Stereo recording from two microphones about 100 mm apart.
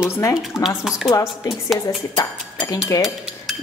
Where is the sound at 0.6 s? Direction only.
5° right (ahead or behind).